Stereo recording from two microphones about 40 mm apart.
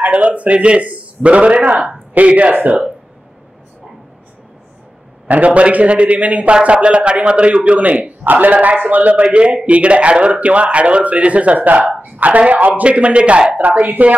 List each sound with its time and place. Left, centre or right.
0.1 s speech: right
5.3 s speech: right
6.5 s speech: right
8.3 s a man's voice: right
9.3 s a man's voice: right